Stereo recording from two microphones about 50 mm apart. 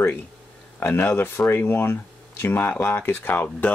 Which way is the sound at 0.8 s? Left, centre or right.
Left.